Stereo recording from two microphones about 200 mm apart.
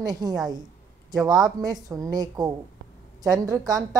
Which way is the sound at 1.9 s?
15° right (ahead or behind).